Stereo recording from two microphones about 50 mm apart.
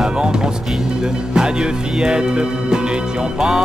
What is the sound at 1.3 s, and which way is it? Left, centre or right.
Speech, centre.